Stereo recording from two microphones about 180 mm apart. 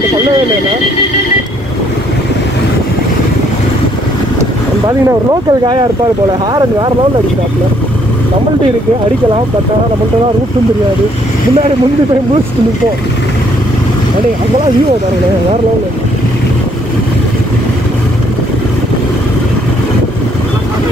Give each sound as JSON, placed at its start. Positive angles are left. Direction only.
{"t": 4.8, "sound": "speech", "side_deg": -20}